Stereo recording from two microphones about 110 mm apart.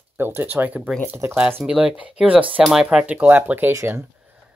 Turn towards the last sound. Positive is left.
turn(degrees=-25)  # may be behind; listen again after turning